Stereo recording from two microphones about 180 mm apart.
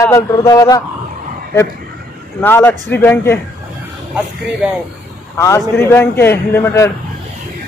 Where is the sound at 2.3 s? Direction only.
10° left (ahead or behind).